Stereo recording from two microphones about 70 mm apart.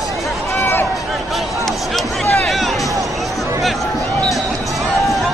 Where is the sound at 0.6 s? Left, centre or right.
Left.